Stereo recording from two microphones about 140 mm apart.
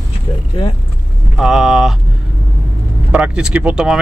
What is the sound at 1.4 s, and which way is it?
Speech, 5° right (ahead or behind).